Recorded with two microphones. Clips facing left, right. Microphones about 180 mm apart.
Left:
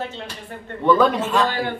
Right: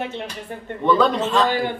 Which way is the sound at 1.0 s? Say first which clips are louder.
Even; 10° left (ahead or behind).